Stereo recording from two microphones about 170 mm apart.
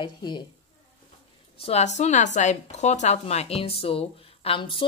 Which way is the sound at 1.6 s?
40° left (ahead or behind).